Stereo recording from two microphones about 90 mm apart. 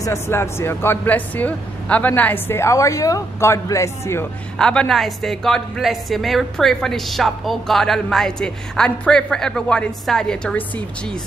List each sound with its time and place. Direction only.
0.0 s speech: 30° left (ahead or behind)
4.6 s a woman's voice: 10° left (ahead or behind)